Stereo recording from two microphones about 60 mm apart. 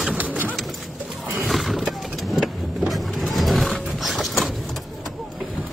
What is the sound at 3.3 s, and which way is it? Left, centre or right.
Music, centre.